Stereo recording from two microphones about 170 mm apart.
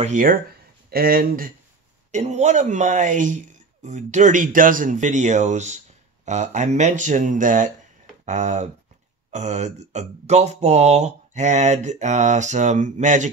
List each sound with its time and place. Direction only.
0.0 s speech: 50° right (ahead or behind)
0.8 s speech: 65° right (ahead or behind)
2.1 s speech: 40° right (ahead or behind)